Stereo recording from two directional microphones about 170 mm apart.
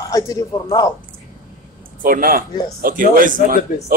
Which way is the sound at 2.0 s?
55° right (ahead or behind).